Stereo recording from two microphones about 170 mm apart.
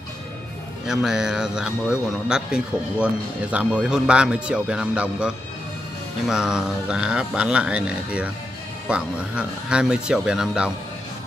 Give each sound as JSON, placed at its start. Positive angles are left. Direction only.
{"t": 0.8, "sound": "speech", "side_deg": -5}